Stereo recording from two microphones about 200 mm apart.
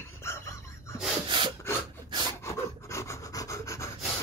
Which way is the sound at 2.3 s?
15° left (ahead or behind).